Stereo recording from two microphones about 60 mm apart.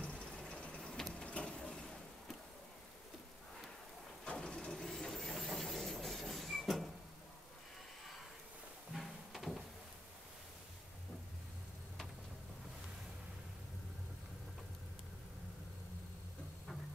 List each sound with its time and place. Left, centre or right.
0.0 s a sound: centre
1.2 s printer: centre
4.2 s vehicle: centre
8.9 s music: centre